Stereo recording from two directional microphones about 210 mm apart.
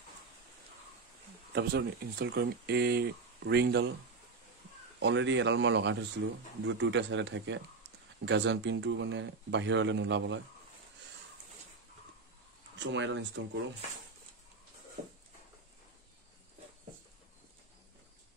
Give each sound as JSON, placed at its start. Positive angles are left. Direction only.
{"t": 1.5, "sound": "speech", "side_deg": -55}
{"t": 5.0, "sound": "speech", "side_deg": -60}
{"t": 12.7, "sound": "speech", "side_deg": -60}